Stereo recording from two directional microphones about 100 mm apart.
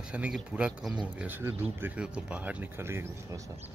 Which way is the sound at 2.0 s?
10° right (ahead or behind).